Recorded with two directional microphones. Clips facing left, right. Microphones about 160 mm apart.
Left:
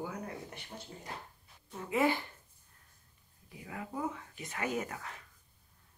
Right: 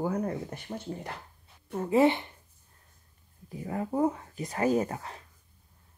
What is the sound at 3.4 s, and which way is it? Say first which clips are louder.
Speech: right 10 dB; 40° right (ahead or behind).